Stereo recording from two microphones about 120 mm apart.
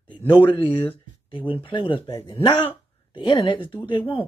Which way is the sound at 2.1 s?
25° left (ahead or behind).